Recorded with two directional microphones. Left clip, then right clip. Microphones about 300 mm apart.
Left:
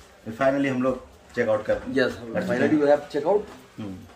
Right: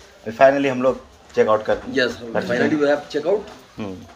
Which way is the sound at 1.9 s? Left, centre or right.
Centre.